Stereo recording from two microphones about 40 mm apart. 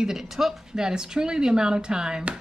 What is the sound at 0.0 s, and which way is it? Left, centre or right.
A woman's voice, centre.